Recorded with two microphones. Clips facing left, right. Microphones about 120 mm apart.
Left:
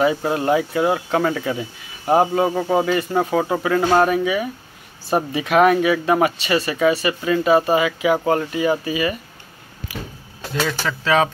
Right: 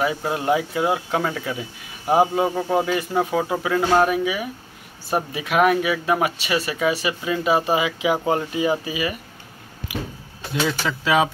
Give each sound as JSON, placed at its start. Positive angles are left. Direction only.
{"t": 0.0, "sound": "speech", "side_deg": -5}
{"t": 2.4, "sound": "speech", "side_deg": 0}
{"t": 9.9, "sound": "a sound", "side_deg": -20}
{"t": 10.5, "sound": "speech", "side_deg": -10}